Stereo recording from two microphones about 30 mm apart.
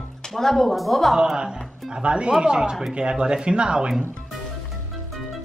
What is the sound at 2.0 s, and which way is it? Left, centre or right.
Speech, right.